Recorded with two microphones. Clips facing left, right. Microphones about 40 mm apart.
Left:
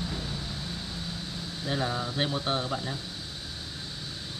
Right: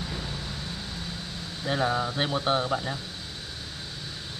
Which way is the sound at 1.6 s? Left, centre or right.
Right.